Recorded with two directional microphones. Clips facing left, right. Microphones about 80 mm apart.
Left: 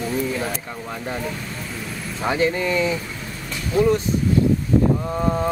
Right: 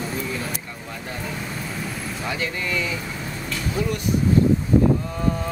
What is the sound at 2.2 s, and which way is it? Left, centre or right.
Speech, left.